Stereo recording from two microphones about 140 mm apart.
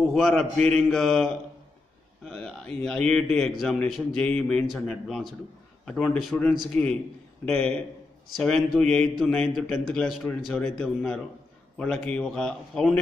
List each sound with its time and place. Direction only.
0.1 s a man's voice: 5° left (ahead or behind)